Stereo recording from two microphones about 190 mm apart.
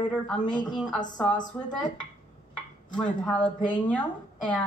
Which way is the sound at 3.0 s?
5° left (ahead or behind).